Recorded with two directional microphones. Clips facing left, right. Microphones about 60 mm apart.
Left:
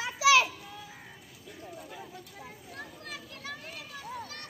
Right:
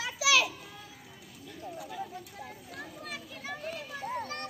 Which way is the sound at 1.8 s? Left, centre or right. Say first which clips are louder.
Right 5 dB; centre.